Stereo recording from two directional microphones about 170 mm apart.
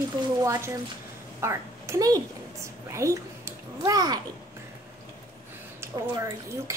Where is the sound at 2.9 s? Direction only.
15° right (ahead or behind).